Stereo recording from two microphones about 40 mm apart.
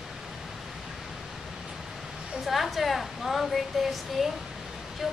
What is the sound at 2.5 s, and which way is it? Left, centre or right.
A woman's voice, centre.